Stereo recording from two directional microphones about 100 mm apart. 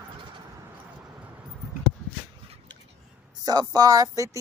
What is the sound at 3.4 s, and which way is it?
Speech, 40° right (ahead or behind).